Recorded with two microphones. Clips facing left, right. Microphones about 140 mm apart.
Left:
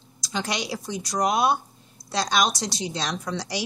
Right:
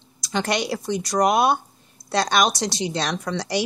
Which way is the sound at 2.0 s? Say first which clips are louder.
Right 6 dB; 25° right (ahead or behind).